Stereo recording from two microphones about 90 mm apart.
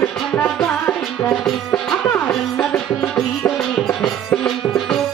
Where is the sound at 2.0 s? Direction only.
20° left (ahead or behind).